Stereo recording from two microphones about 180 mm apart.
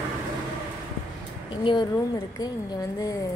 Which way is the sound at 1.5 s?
25° left (ahead or behind).